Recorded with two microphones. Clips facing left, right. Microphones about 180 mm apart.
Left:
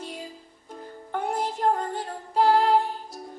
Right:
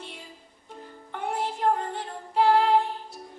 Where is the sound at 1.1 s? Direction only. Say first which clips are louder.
Left 2 dB; 40° left (ahead or behind).